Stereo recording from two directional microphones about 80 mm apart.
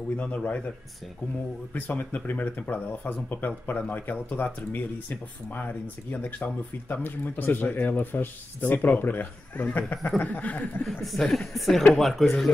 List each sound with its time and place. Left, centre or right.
0.2 s speech: centre
1.7 s speech: centre
10.9 s speech: centre